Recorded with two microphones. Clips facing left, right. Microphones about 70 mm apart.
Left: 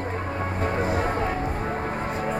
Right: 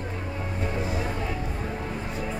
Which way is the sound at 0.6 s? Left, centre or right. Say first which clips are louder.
Left 5 dB; left.